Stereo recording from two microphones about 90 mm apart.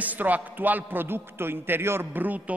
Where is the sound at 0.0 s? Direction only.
20° right (ahead or behind).